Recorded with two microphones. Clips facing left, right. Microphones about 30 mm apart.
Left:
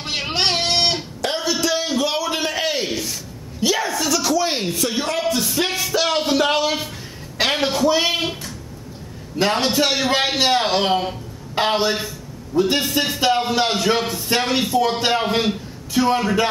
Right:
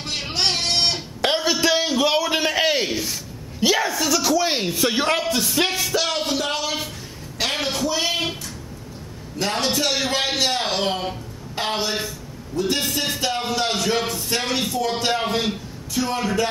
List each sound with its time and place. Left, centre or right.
0.0 s guitar: centre
1.2 s a sound: right; by 4.8 s centre
4.8 s speech: right
5.2 s music: centre
6.0 s music: centre
7.5 s speech: centre
9.5 s a man's voice: centre